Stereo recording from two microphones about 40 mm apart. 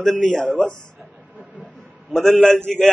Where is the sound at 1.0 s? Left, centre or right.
Right.